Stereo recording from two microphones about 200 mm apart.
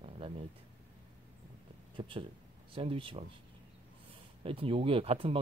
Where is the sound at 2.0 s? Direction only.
25° right (ahead or behind).